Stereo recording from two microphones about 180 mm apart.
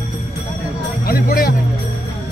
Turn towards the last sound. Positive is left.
turn(degrees=55)  # may be behind; listen again after turning